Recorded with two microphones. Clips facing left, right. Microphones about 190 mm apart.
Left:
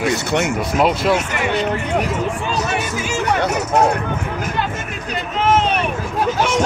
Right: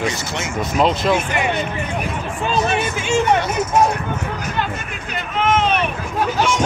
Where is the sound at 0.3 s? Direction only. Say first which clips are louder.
Left 8 dB; 65° left (ahead or behind).